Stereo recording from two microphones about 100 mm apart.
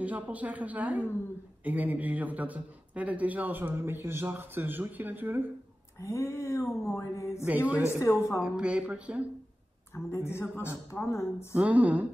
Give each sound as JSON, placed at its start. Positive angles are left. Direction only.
{"t": 0.0, "sound": "a man's voice", "side_deg": -15}
{"t": 5.9, "sound": "a woman's voice", "side_deg": 30}
{"t": 7.4, "sound": "a man's voice", "side_deg": -15}
{"t": 7.8, "sound": "a woman's voice", "side_deg": 25}
{"t": 8.4, "sound": "a man's voice", "side_deg": -10}
{"t": 9.9, "sound": "a woman's voice", "side_deg": 25}
{"t": 11.5, "sound": "a man's voice", "side_deg": -15}